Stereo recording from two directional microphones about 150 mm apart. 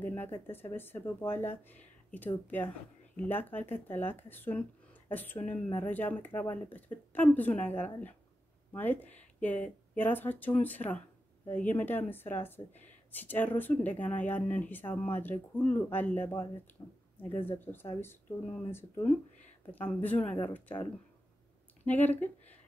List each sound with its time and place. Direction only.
0.0 s speech: 15° left (ahead or behind)
16.8 s speech: 25° left (ahead or behind)
17.5 s speech: 15° left (ahead or behind)
21.8 s speech: 10° left (ahead or behind)